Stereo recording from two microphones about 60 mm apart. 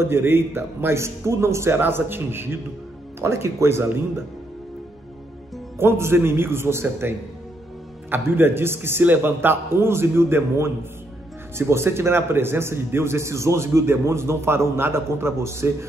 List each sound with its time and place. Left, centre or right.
0.0 s a man's voice: right
5.8 s a man's voice: right